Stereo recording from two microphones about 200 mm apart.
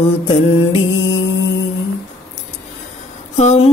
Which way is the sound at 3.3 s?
35° left (ahead or behind).